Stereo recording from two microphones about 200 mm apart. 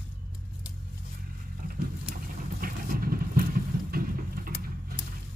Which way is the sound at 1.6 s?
45° right (ahead or behind).